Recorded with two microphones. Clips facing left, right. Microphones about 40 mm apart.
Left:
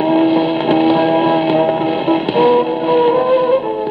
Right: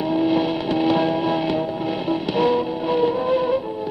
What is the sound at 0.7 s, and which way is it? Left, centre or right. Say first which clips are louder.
Music: left 8 dB; left.